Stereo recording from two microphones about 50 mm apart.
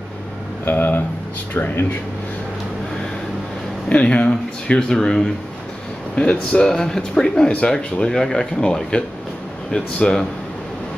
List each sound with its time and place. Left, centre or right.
0.7 s a sound: left
1.5 s speech: left
3.9 s speech: left
4.8 s speech: centre
9.9 s speech: centre